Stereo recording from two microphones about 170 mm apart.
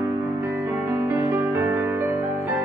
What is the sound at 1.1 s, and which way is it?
Music, 15° right (ahead or behind).